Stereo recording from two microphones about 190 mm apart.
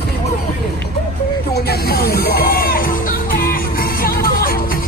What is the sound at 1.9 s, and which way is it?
Music, 55° left (ahead or behind).